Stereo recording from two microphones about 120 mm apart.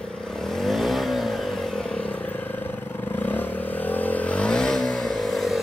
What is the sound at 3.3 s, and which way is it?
Vehicle, 15° left (ahead or behind).